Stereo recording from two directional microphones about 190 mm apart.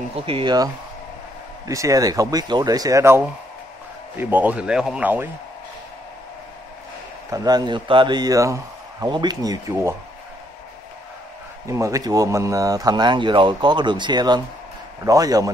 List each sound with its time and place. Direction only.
0.1 s speech: 30° right (ahead or behind)
1.7 s speech: 15° right (ahead or behind)
7.2 s speech: 20° right (ahead or behind)
11.6 s speech: 15° right (ahead or behind)